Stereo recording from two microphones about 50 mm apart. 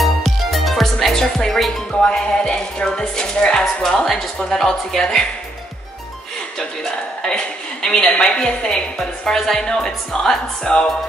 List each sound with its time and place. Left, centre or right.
0.0 s music: centre
2.0 s a woman's voice: centre
7.2 s a woman's voice: centre